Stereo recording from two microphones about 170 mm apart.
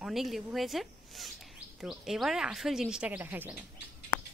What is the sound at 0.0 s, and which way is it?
Speech, centre (ahead or behind).